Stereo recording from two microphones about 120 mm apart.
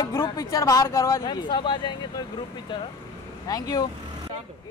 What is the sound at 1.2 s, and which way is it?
Speech, 40° left (ahead or behind).